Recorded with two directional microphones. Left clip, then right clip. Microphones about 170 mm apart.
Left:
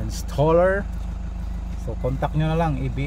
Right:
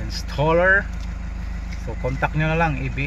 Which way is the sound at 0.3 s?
40° left (ahead or behind).